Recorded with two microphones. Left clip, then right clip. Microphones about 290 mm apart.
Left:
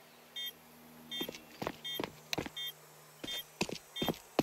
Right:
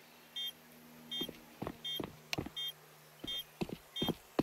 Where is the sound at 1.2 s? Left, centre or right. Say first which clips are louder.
Left 1 dB; left.